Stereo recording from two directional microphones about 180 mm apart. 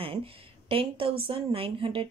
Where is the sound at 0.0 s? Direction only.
30° right (ahead or behind).